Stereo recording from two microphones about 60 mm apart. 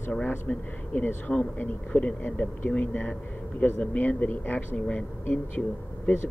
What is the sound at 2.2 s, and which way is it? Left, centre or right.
Speech, left.